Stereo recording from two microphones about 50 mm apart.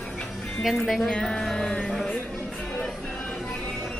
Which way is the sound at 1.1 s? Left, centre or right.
Centre.